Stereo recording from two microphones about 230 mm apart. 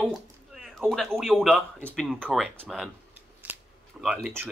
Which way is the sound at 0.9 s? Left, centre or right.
Centre.